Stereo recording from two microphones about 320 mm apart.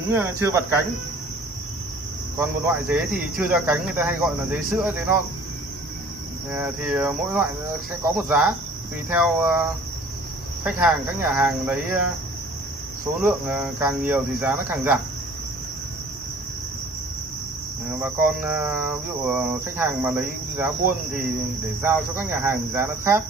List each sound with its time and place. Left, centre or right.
0.1 s cricket: centre
2.3 s speech: centre
6.5 s speech: centre
10.6 s speech: centre
13.2 s speech: centre
18.0 s speech: centre
21.8 s cricket: centre